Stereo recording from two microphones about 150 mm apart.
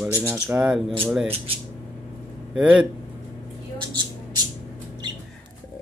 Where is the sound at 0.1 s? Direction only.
15° right (ahead or behind).